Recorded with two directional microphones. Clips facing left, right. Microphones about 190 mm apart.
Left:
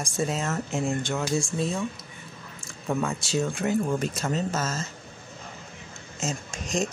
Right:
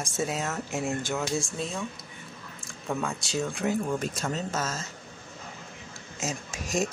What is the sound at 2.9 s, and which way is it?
Speech, 5° left (ahead or behind).